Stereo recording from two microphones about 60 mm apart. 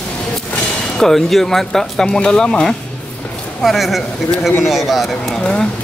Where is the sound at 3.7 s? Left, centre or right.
Centre.